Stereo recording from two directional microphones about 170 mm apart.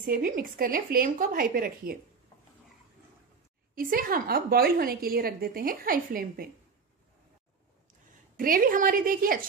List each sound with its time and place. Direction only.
0.0 s a woman's voice: 55° right (ahead or behind)
3.7 s a woman's voice: 55° right (ahead or behind)
8.4 s a woman's voice: 55° right (ahead or behind)